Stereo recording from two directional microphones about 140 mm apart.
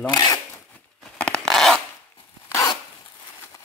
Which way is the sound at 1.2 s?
5° left (ahead or behind).